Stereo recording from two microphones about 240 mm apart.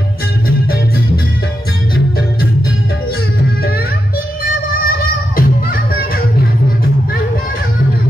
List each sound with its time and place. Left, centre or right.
4.8 s music: left